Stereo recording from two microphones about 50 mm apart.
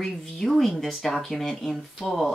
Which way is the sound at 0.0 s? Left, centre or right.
Centre.